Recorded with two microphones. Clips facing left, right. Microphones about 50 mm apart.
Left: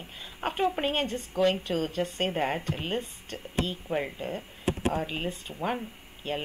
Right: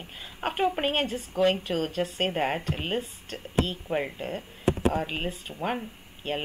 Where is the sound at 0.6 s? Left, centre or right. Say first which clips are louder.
Right 2 dB; centre.